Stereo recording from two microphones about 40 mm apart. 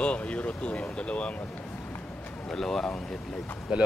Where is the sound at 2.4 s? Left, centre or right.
Centre.